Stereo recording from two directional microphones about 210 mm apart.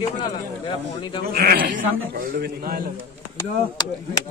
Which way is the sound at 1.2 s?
45° right (ahead or behind).